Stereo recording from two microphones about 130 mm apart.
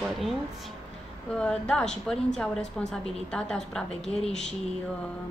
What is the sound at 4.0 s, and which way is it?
Speech, 55° left (ahead or behind).